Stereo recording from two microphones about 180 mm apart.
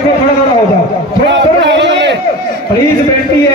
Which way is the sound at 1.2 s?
75° right (ahead or behind).